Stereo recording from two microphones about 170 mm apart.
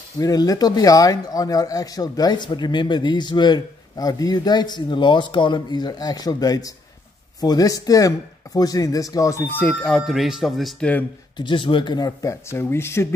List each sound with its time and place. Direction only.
0.2 s speech: 20° left (ahead or behind)
11.3 s speech: 30° left (ahead or behind)